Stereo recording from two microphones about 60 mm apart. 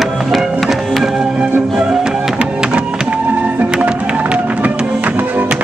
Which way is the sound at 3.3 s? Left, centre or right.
Right.